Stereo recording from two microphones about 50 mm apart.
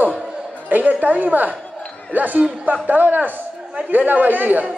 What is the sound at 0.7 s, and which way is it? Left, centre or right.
A man's voice, right.